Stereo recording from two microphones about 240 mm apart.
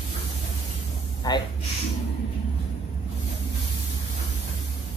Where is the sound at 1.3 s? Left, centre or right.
Centre.